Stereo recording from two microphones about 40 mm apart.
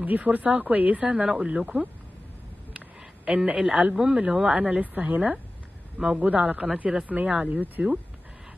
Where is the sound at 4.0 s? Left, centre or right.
Right.